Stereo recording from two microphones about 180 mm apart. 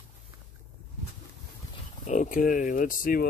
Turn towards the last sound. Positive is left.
turn(degrees=50)  # may be behind; listen again after turning